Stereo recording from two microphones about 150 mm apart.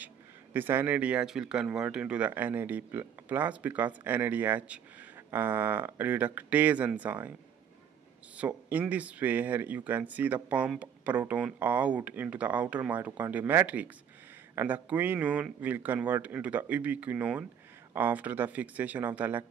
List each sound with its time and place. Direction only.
0.0 s speech: 15° right (ahead or behind)
8.4 s speech: 10° right (ahead or behind)